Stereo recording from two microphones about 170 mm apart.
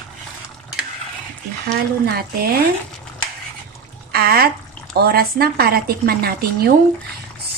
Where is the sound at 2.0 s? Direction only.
65° right (ahead or behind).